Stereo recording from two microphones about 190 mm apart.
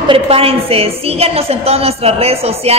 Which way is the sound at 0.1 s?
30° right (ahead or behind).